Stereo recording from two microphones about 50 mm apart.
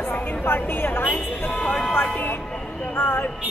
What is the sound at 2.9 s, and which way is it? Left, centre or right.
Speech, left.